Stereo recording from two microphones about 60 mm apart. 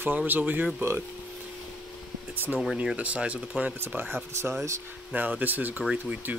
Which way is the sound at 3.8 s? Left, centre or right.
Right.